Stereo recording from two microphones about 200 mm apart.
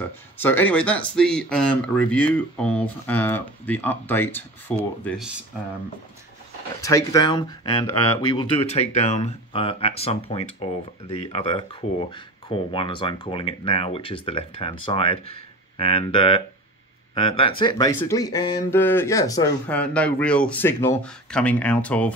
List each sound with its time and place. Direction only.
0.4 s speech: 10° left (ahead or behind)
6.8 s speech: 15° left (ahead or behind)
19.7 s speech: 5° left (ahead or behind)